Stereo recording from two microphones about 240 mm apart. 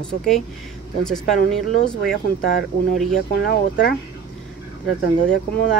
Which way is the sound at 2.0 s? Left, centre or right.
Left.